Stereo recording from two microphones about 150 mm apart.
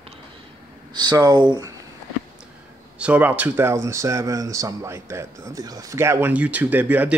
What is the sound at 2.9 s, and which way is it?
Speech, 10° right (ahead or behind).